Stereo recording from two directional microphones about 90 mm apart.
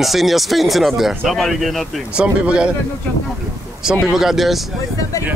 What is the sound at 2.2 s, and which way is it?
Speech, 10° right (ahead or behind).